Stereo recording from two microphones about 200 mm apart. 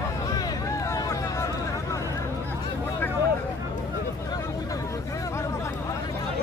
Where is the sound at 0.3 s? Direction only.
20° left (ahead or behind).